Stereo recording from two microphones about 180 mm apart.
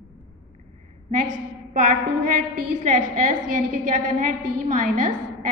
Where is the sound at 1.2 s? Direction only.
45° right (ahead or behind).